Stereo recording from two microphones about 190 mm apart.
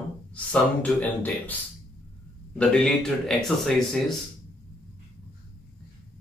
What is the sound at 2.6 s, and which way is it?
Speech, 5° left (ahead or behind).